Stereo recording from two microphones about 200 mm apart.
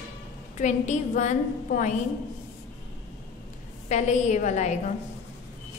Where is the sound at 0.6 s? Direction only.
35° left (ahead or behind).